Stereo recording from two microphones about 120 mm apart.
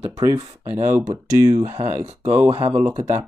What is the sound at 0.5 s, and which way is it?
Speech, 70° right (ahead or behind).